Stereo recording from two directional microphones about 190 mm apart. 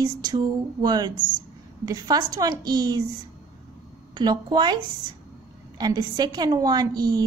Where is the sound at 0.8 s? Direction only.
20° right (ahead or behind).